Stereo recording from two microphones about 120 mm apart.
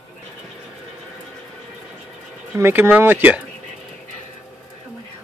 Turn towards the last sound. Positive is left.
turn(degrees=-15)  # may be behind; listen again after turning